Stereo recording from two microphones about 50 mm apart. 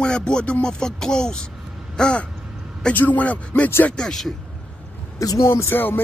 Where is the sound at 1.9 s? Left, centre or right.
Centre.